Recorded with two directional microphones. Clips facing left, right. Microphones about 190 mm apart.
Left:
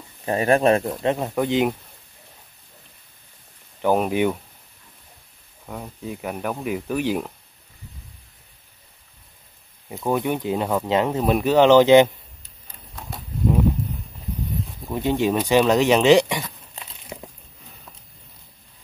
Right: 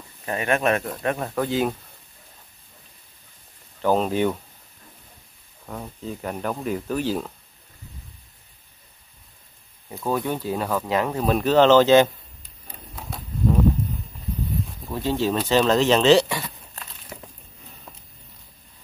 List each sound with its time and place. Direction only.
0.2 s speech: 35° left (ahead or behind)
1.0 s speech: 20° left (ahead or behind)
3.8 s speech: 15° left (ahead or behind)
5.7 s speech: 5° left (ahead or behind)
9.8 s speech: 15° left (ahead or behind)
14.9 s speech: 15° left (ahead or behind)